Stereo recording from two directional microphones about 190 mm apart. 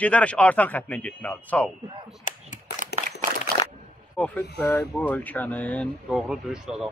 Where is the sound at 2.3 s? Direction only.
40° left (ahead or behind).